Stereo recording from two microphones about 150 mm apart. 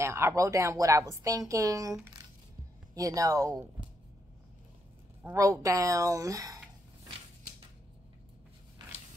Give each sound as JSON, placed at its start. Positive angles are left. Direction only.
{"t": 0.0, "sound": "a woman's voice", "side_deg": -20}
{"t": 5.2, "sound": "a woman's voice", "side_deg": -20}